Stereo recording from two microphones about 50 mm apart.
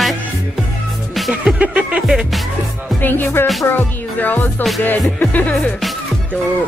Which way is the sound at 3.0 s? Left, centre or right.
Left.